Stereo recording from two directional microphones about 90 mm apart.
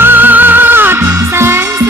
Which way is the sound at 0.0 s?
20° right (ahead or behind).